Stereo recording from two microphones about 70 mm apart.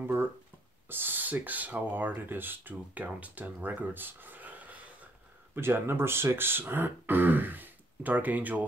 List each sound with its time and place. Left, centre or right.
0.8 s speech: right
5.5 s speech: right